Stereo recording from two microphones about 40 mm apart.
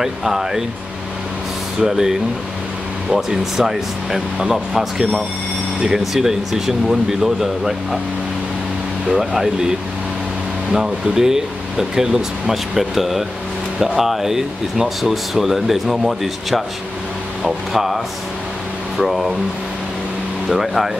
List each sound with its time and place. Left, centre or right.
0.0 s speech: centre
1.8 s speech: centre
9.0 s speech: centre
20.4 s speech: centre